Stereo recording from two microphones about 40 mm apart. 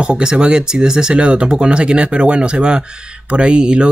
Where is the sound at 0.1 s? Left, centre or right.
Right.